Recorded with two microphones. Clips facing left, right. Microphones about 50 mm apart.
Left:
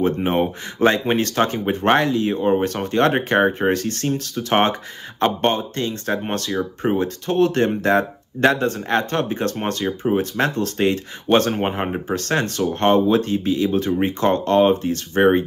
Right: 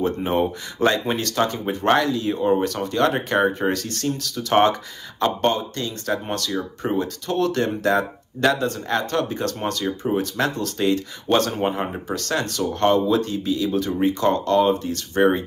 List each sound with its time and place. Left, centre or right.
0.0 s speech: left